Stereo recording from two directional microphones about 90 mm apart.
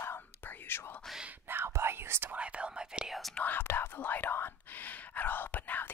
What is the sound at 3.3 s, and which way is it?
Whispering, 20° left (ahead or behind).